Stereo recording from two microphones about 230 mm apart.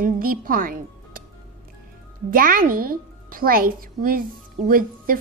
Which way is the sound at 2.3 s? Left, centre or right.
Right.